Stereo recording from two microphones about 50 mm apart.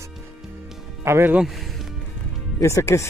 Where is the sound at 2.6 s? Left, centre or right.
Left.